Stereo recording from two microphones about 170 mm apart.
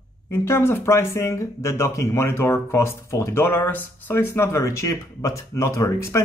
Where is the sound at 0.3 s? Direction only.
15° left (ahead or behind).